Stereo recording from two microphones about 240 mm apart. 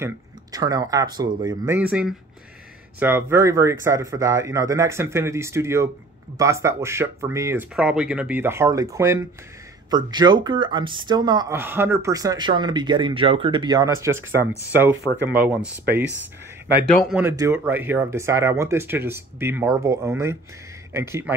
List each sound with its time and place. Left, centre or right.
0.0 s speech: centre
1.8 s speech: centre
16.8 s speech: centre
17.2 s speech: centre